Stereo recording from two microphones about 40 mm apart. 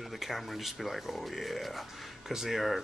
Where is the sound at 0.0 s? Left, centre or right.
Centre.